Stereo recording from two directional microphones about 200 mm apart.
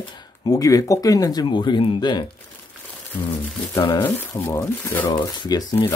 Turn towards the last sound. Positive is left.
turn(degrees=15)  # may be behind; listen again after turning